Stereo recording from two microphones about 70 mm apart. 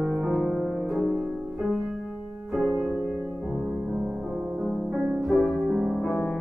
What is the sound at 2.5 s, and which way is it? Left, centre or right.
Music, centre.